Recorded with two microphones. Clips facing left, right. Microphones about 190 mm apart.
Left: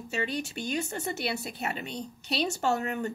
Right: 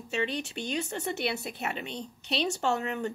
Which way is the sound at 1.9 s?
40° left (ahead or behind).